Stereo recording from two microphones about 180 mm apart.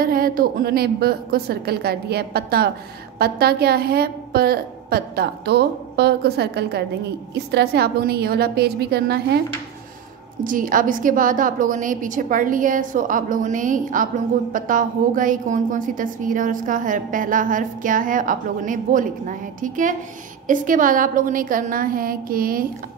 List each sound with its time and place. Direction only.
0.0 s a woman's voice: 55° right (ahead or behind)
10.4 s a woman's voice: 50° right (ahead or behind)